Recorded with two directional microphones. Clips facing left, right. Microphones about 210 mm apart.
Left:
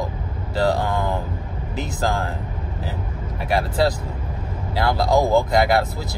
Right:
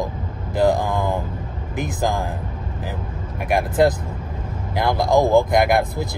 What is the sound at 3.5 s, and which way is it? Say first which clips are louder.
Speech: right 3 dB; 20° right (ahead or behind).